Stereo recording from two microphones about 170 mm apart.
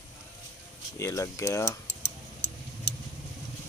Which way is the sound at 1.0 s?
20° left (ahead or behind).